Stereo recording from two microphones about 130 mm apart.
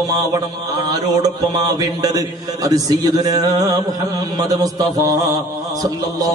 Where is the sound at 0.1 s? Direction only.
30° right (ahead or behind).